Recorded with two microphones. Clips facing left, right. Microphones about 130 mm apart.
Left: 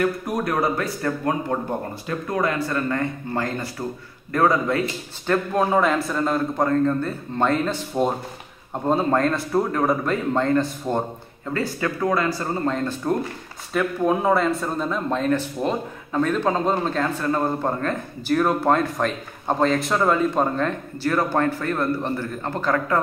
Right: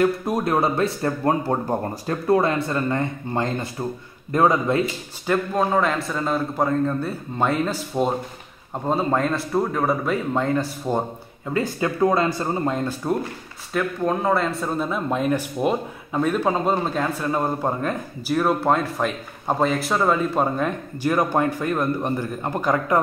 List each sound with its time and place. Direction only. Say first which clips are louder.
0.0 s speech: right 2 dB; 25° right (ahead or behind)
5.2 s speech: even; 10° right (ahead or behind)
5.6 s a man's voice: left 3 dB; 5° left (ahead or behind); by 13.1 s 15° right (ahead or behind)
13.7 s speech: left 2 dB; 5° left (ahead or behind); by 22.9 s 15° right (ahead or behind)